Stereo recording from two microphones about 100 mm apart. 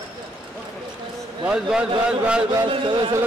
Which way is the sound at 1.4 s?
10° right (ahead or behind).